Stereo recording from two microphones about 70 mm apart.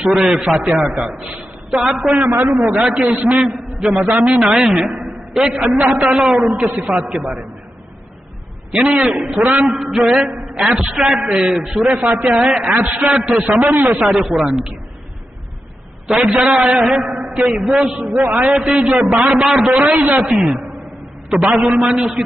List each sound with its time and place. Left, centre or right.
0.0 s a man's voice: centre
9.0 s a man's voice: centre
16.1 s a man's voice: centre
19.8 s a man's voice: centre
20.2 s a man's voice: centre